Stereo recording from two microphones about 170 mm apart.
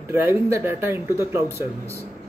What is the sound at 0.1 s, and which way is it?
Speech, 15° right (ahead or behind).